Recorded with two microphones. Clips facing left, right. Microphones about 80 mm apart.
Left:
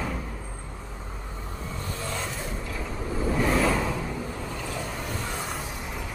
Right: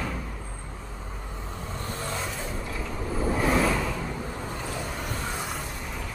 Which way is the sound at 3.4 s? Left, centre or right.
Centre.